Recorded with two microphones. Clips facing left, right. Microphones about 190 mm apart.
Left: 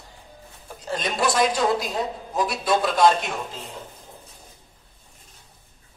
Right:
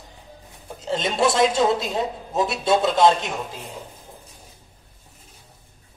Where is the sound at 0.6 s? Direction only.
25° right (ahead or behind).